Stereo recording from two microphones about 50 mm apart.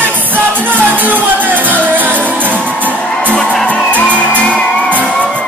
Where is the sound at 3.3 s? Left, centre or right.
Left.